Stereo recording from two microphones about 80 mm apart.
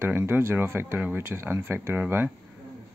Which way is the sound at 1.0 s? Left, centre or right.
Centre.